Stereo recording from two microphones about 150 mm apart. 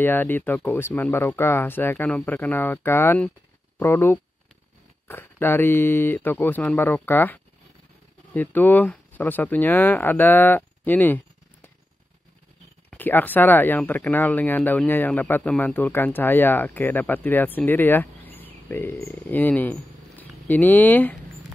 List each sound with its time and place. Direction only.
0.0 s speech: 15° left (ahead or behind)
12.9 s speech: 10° left (ahead or behind)